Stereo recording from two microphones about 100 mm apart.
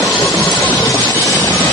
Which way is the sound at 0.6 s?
15° left (ahead or behind).